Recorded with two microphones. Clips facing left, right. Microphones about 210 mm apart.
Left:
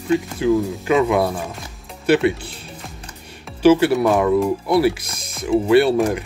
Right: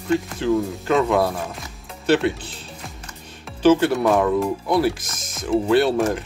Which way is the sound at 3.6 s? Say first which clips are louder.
Left 2 dB; 10° left (ahead or behind).